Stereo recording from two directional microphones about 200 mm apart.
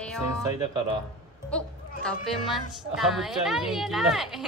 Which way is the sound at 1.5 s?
5° left (ahead or behind).